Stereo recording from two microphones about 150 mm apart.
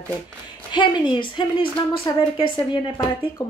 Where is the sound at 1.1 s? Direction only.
35° left (ahead or behind).